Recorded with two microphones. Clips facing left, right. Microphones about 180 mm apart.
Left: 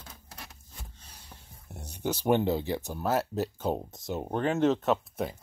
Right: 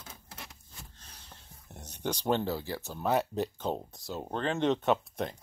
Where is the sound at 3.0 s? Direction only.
5° left (ahead or behind).